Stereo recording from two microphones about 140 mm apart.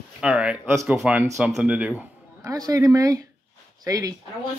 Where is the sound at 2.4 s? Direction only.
25° right (ahead or behind).